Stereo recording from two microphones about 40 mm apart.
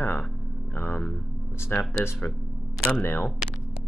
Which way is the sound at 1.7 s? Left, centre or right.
Left.